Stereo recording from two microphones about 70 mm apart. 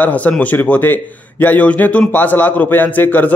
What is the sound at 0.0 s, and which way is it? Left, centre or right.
A man's voice, left.